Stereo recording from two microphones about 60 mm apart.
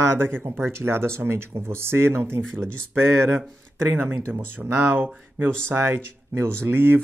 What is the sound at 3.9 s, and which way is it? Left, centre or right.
Speech, right.